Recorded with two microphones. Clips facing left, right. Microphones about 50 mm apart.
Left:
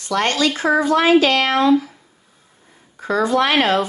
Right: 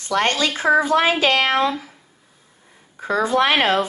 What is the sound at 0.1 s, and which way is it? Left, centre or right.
A woman's voice, right.